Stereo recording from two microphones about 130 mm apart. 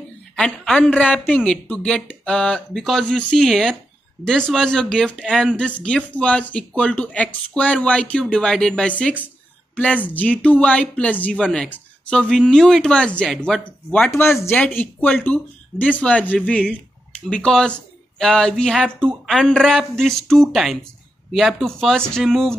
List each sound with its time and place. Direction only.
0.4 s speech: 5° left (ahead or behind)